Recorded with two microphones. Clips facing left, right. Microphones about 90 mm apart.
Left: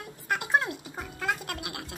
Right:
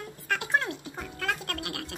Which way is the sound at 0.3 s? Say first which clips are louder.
Left 1 dB; 5° left (ahead or behind).